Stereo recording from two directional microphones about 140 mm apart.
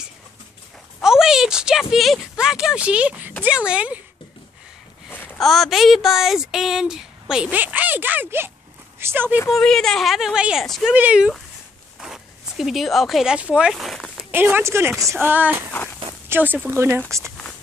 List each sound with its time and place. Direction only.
1.0 s a sound: 5° right (ahead or behind)
3.4 s speech: 5° right (ahead or behind)
5.1 s a sound: 15° left (ahead or behind)
5.4 s speech: centre (ahead or behind); by 9.4 s 15° right (ahead or behind)
9.5 s speech: 5° left (ahead or behind)
14.3 s speech: 15° right (ahead or behind)